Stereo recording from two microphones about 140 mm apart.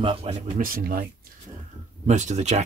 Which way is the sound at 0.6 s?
90° right.